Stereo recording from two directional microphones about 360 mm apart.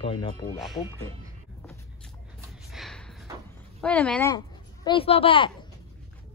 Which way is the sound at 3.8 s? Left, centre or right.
Centre.